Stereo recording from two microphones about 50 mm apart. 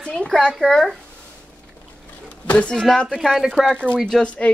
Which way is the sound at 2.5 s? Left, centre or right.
Left.